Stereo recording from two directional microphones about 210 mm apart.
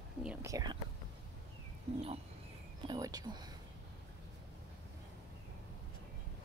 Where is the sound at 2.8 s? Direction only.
20° right (ahead or behind).